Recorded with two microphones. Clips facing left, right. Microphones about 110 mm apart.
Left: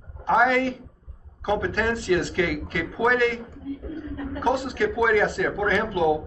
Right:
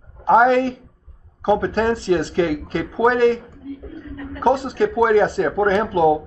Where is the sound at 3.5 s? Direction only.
25° left (ahead or behind).